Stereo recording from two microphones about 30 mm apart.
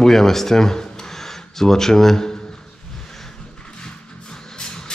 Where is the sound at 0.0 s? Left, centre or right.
Centre.